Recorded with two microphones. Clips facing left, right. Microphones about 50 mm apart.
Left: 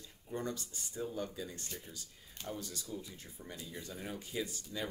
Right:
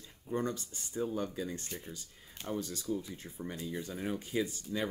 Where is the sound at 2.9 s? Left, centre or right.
Right.